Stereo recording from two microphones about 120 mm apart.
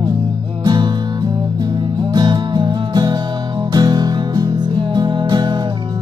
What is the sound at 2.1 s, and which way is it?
Music, 35° right (ahead or behind).